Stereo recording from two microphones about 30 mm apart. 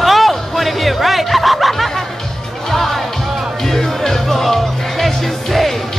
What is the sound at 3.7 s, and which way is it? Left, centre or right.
Music, centre.